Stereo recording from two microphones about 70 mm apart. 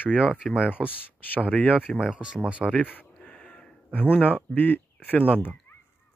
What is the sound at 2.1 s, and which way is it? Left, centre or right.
Speech, centre.